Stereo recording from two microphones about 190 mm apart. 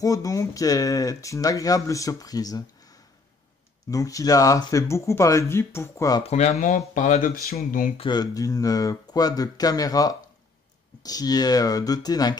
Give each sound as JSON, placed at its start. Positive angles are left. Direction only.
{"t": 0.0, "sound": "speech", "side_deg": 20}
{"t": 3.9, "sound": "speech", "side_deg": 15}
{"t": 6.2, "sound": "speech", "side_deg": 35}
{"t": 8.0, "sound": "speech", "side_deg": 20}